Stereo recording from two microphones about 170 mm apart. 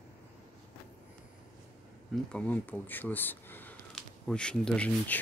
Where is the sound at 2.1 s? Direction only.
5° left (ahead or behind).